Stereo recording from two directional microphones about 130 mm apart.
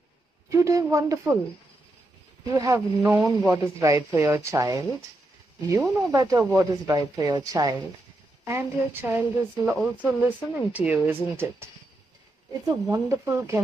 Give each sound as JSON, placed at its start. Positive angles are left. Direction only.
{"t": 0.5, "sound": "speech", "side_deg": -25}
{"t": 2.5, "sound": "speech", "side_deg": -25}